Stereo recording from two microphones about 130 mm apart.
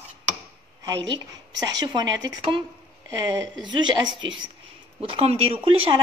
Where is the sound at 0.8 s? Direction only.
30° right (ahead or behind).